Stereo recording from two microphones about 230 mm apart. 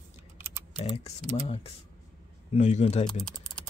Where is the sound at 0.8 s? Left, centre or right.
Left.